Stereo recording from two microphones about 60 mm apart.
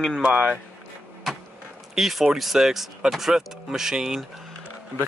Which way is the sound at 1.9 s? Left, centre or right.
Centre.